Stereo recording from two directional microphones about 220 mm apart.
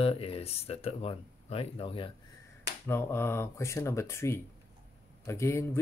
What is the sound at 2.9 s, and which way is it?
Speech, 10° left (ahead or behind).